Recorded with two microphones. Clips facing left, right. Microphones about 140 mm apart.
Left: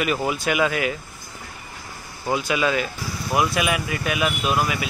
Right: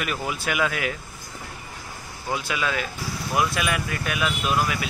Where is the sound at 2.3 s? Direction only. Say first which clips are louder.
Left 5 dB; 5° left (ahead or behind).